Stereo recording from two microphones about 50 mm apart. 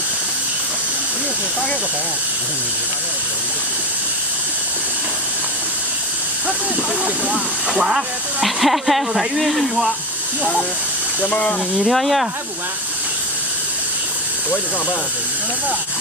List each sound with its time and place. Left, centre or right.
7.7 s speech: centre
11.1 s speech: left
11.8 s speech: centre